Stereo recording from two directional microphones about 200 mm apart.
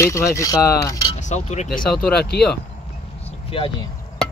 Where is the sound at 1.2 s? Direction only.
35° left (ahead or behind).